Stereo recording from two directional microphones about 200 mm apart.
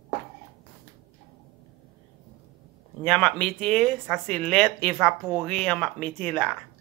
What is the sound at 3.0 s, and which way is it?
Speech, 5° left (ahead or behind).